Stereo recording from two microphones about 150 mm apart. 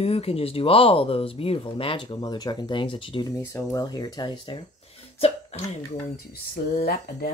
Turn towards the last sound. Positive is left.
turn(degrees=90)